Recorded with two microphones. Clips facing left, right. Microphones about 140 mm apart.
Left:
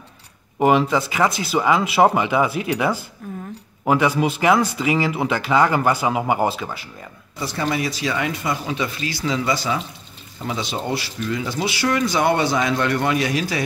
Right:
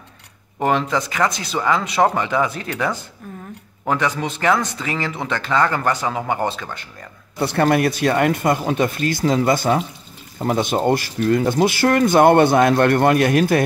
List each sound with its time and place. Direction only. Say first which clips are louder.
0.6 s speech: left 3 dB; 5° left (ahead or behind)
7.3 s speech: right 7 dB; 60° right (ahead or behind)